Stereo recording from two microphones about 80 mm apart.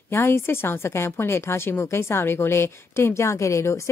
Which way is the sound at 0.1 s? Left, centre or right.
Left.